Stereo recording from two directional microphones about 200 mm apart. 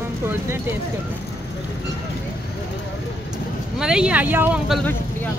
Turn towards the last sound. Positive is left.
turn(degrees=0)  # may be behind; listen again after turning